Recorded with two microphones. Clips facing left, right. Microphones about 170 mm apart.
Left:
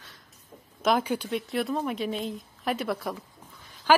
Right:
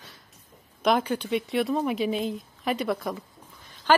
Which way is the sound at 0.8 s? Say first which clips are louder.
Right 1 dB; 5° left (ahead or behind).